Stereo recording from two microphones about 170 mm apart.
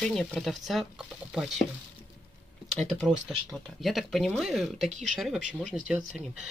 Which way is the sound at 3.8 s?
Centre (ahead or behind).